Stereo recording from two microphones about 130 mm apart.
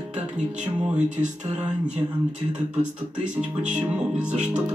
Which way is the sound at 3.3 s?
10° right (ahead or behind).